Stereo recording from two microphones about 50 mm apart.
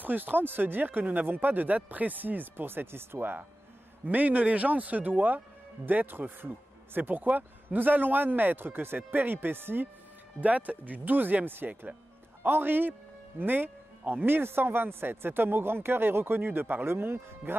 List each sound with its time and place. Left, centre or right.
0.0 s speech: right
4.0 s speech: right
10.4 s speech: right